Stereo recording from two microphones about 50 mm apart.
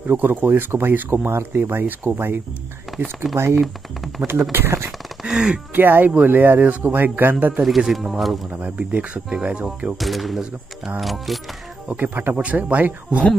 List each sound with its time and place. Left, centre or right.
0.0 s speech: right
2.9 s speech: centre
3.3 s speech: right
3.6 s speech: centre
4.5 s speech: right
5.2 s speech: centre
5.8 s speech: right
7.6 s speech: centre
8.6 s speech: right
9.9 s speech: centre
12.0 s speech: right